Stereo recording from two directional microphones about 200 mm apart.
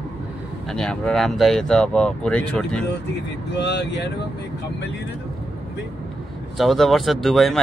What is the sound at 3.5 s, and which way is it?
Speech, 60° left (ahead or behind).